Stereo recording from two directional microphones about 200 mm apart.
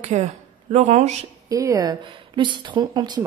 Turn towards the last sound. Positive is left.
turn(degrees=-20)  # may be behind; listen again after turning